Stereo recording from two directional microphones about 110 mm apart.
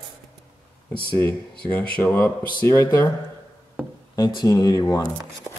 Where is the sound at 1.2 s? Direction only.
20° left (ahead or behind).